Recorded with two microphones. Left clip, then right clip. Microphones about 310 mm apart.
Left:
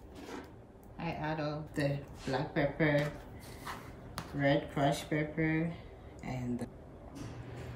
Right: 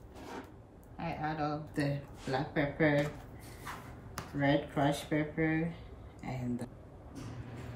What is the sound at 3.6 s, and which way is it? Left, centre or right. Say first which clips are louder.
Speech: left 1 dB; centre.